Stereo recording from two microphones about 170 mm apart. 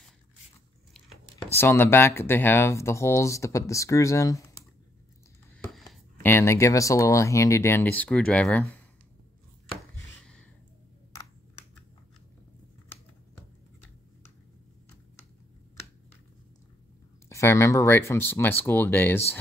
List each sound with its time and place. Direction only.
1.5 s speech: 15° left (ahead or behind)
5.7 s a sound: centre (ahead or behind)
6.2 s speech: 15° left (ahead or behind)
17.3 s speech: 15° left (ahead or behind)